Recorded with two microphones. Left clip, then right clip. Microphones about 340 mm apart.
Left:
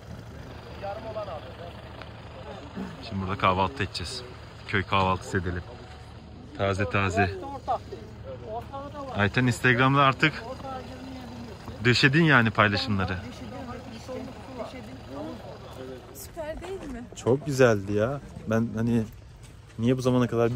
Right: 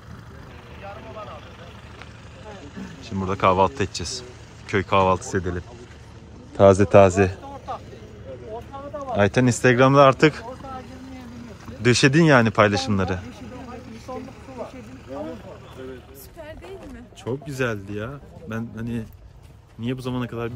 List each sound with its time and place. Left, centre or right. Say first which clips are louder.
0.8 s speech: left 3 dB; left
2.4 s vehicle: right 1 dB; left
3.0 s speech: right 5 dB; centre
6.8 s speech: right 11 dB; centre
9.1 s speech: right 6 dB; centre
11.8 s speech: right 4 dB; centre
16.3 s a sound: left 4 dB; centre
17.2 s speech: left 5 dB; centre